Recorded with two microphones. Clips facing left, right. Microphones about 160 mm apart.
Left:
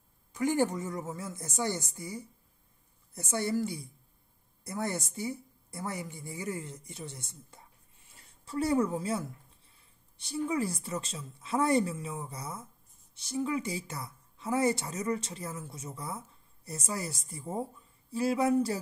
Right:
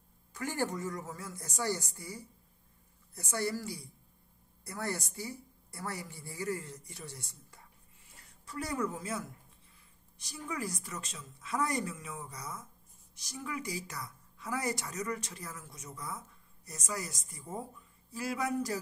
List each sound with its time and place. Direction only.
0.3 s a woman's voice: 20° left (ahead or behind)